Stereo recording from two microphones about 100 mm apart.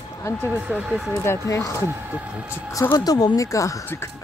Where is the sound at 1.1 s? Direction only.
25° left (ahead or behind).